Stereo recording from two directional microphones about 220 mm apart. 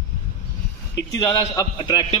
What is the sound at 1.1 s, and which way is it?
Speech, 15° left (ahead or behind).